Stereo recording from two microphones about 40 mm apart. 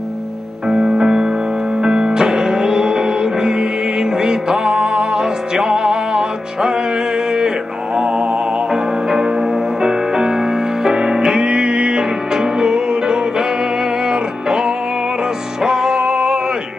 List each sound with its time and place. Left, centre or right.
0.7 s music: centre